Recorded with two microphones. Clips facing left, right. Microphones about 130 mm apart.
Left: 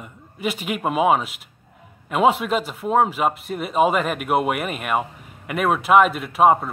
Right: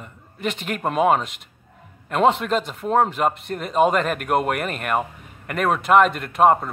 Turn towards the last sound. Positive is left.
turn(degrees=5)  # may be behind; listen again after turning